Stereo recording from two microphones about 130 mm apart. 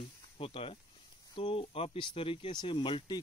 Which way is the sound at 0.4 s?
45° left (ahead or behind).